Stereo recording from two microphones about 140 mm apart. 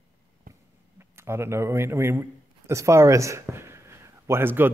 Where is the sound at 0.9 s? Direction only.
20° right (ahead or behind).